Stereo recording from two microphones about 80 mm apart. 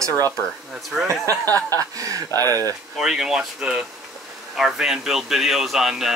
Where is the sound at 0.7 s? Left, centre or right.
Centre.